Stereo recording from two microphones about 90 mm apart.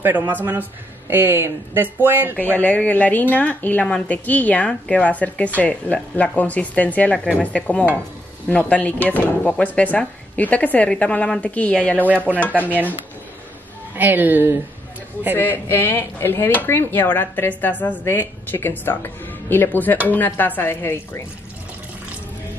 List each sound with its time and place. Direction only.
0.3 s speech: 20° right (ahead or behind)
2.3 s a woman's voice: 20° left (ahead or behind)
13.9 s speech: 20° right (ahead or behind)
15.3 s speech: 25° left (ahead or behind)